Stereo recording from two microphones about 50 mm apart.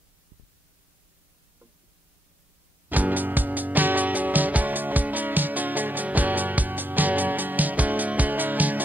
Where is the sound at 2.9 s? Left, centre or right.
Right.